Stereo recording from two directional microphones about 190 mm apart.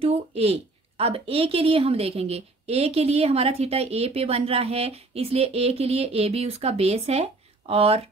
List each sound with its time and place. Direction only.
0.0 s speech: 35° right (ahead or behind)